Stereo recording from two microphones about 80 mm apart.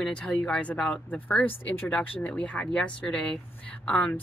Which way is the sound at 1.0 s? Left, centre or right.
Left.